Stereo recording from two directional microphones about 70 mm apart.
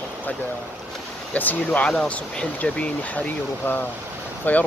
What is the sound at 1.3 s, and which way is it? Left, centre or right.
Speech, left.